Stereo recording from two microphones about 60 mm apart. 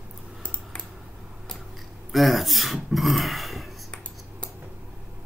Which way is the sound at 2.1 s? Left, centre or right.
Centre.